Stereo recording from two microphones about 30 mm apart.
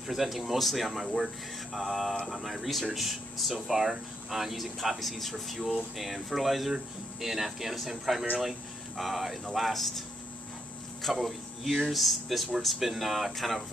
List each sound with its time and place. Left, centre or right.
0.0 s speech: centre
11.1 s speech: centre